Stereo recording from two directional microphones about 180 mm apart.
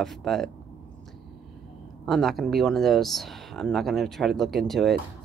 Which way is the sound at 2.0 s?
Centre (ahead or behind).